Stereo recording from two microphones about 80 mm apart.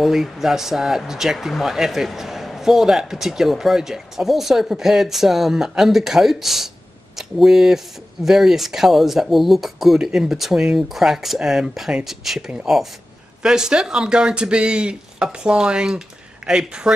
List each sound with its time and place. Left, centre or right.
0.0 s speech: centre